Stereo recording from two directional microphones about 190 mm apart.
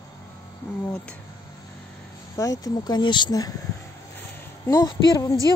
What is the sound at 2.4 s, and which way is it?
Speech, 20° left (ahead or behind).